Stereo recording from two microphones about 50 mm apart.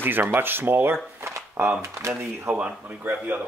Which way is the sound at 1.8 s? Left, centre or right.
Right.